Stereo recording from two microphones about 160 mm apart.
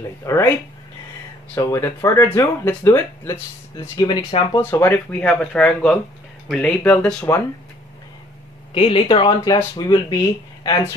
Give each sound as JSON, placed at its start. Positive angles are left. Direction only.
{"t": 0.2, "sound": "speech", "side_deg": 20}
{"t": 1.5, "sound": "speech", "side_deg": 15}
{"t": 8.7, "sound": "speech", "side_deg": 35}